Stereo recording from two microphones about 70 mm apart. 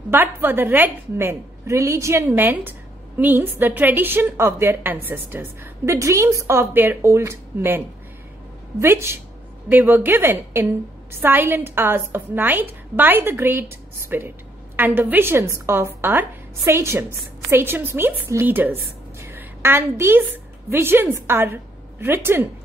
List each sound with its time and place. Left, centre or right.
0.1 s a woman's voice: right
2.2 s a woman's voice: right
9.7 s a woman's voice: right
19.1 s a sound: right
20.7 s a woman's voice: right